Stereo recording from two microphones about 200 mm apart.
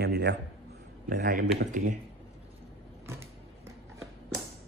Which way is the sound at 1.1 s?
45° right (ahead or behind).